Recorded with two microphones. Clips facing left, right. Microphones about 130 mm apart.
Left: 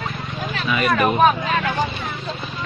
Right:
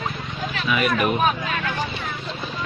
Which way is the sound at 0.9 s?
35° left (ahead or behind).